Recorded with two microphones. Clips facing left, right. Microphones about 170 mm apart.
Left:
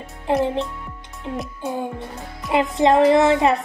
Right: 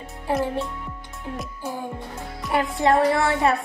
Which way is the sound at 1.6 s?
20° left (ahead or behind).